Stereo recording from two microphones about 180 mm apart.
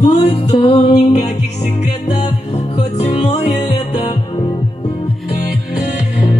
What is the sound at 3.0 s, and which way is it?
Music, 40° left (ahead or behind).